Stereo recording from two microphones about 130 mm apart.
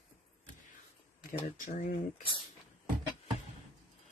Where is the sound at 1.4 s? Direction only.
70° left (ahead or behind).